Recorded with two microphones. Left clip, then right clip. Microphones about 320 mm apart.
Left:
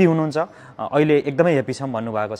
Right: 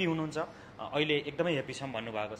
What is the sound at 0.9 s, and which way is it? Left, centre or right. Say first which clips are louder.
A man's voice: left 13 dB; left.